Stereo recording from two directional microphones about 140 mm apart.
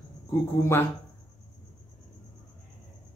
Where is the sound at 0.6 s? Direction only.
20° left (ahead or behind).